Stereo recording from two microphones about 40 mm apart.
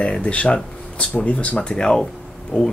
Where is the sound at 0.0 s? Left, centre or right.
Left.